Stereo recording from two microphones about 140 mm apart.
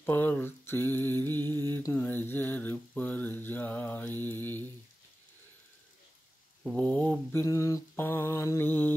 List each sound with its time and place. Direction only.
0.0 s mantra: 15° left (ahead or behind)
6.6 s mantra: 10° left (ahead or behind)
7.4 s mantra: 25° left (ahead or behind)